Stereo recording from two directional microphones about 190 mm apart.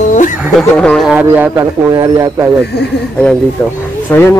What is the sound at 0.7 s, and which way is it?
Speech, 5° left (ahead or behind).